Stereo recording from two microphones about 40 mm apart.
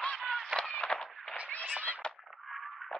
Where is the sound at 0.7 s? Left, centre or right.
Left.